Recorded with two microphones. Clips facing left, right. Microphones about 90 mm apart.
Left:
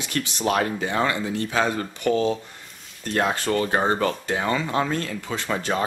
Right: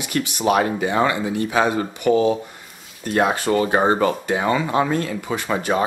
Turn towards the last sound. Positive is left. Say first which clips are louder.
# right 4 dB
turn(degrees=-15)  # may be behind; listen again after turning